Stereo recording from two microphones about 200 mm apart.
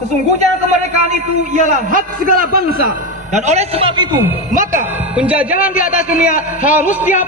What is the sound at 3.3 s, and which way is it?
Speech, 35° right (ahead or behind).